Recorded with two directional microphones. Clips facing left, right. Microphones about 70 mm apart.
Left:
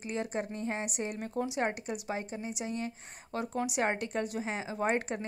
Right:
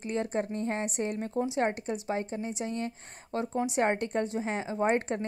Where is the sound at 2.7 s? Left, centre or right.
Right.